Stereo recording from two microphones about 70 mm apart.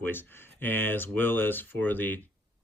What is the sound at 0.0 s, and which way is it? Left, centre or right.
Speech, left.